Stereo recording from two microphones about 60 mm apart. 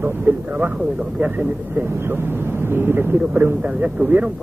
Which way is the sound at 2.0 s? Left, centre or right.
Right.